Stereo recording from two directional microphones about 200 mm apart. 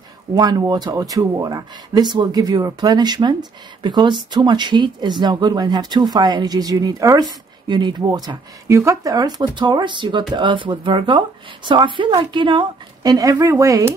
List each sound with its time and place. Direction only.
0.3 s speech: 20° right (ahead or behind)